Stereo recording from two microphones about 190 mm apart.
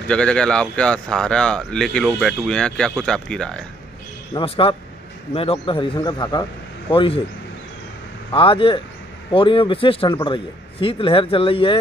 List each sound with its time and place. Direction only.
0.1 s speech: 5° left (ahead or behind)
4.3 s speech: 25° left (ahead or behind)
8.3 s speech: 25° left (ahead or behind)